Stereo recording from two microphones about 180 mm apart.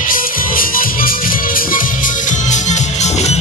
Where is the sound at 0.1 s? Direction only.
50° left (ahead or behind).